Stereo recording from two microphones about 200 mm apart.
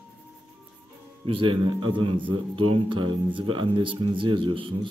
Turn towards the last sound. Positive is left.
turn(degrees=-25)  # may be behind; listen again after turning